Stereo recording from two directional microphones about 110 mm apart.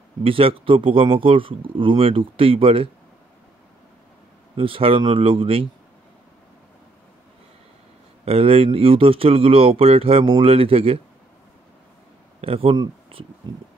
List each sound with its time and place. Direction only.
0.2 s speech: 55° right (ahead or behind)
4.6 s speech: 55° right (ahead or behind)
8.3 s speech: 60° right (ahead or behind)
12.4 s speech: 60° right (ahead or behind)